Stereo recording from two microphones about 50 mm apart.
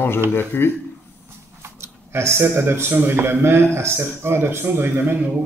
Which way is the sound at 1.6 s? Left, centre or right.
Right.